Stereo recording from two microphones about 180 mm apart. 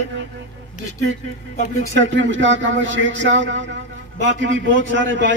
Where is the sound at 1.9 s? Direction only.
90° right.